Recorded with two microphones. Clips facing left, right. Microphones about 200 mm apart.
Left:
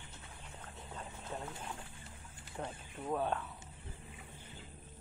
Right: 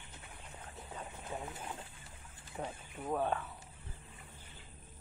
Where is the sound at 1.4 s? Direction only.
20° right (ahead or behind).